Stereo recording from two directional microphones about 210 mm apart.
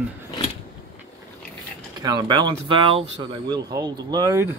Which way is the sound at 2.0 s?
20° right (ahead or behind).